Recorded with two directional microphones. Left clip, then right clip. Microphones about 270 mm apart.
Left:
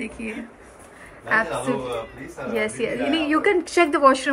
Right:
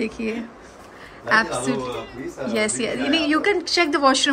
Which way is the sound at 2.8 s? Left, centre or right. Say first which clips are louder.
Right 1 dB; right.